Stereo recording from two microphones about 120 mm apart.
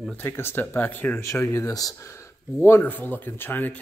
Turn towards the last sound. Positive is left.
turn(degrees=15)  # may be behind; listen again after turning